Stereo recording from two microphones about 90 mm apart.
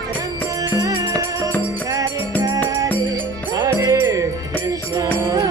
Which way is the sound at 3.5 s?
50° right (ahead or behind).